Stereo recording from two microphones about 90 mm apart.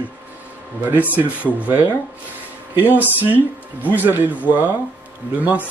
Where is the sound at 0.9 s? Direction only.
20° right (ahead or behind).